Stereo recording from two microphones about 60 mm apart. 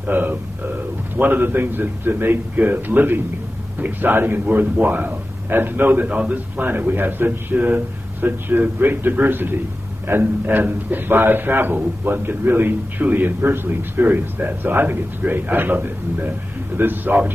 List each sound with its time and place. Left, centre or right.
0.0 s a man's voice: right